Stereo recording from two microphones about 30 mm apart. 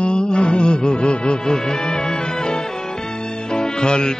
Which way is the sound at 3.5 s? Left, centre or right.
Left.